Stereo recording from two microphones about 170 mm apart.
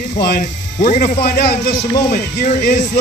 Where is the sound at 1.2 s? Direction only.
75° left (ahead or behind).